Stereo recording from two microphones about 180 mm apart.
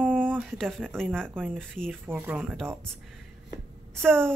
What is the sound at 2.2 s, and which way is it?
Speech, 10° right (ahead or behind).